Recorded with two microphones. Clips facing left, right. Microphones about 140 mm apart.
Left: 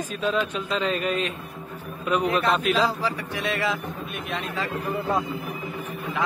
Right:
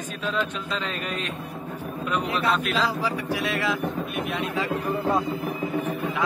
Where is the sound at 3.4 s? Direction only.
Centre (ahead or behind).